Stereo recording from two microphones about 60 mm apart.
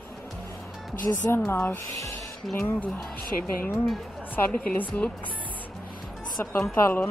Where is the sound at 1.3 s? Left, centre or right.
Left.